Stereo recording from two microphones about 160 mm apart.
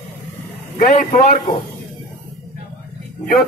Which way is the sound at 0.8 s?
60° left (ahead or behind).